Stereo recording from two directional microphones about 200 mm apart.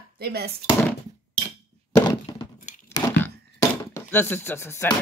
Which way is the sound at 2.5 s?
40° left (ahead or behind).